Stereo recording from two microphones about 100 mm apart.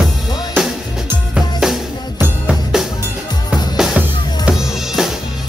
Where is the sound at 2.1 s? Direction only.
20° right (ahead or behind).